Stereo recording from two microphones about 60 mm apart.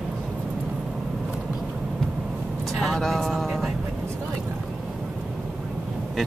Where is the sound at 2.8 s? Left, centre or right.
Centre.